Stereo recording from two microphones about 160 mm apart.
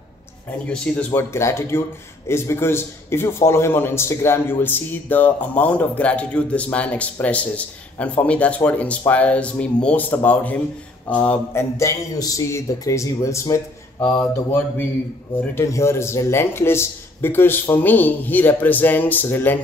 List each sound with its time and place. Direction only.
0.7 s a man's voice: 10° left (ahead or behind)